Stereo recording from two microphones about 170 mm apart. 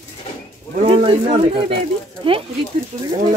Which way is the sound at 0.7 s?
35° right (ahead or behind).